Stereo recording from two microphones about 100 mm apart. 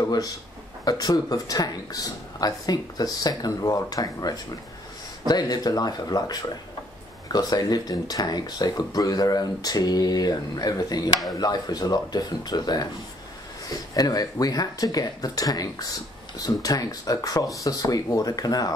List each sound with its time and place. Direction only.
0.8 s speech: 40° left (ahead or behind)
7.3 s speech: 40° left (ahead or behind)